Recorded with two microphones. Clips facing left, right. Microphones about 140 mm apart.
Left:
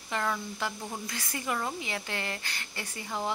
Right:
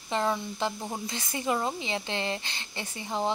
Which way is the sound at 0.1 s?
25° right (ahead or behind).